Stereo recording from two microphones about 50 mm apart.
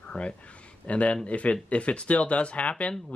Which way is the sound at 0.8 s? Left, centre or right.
Left.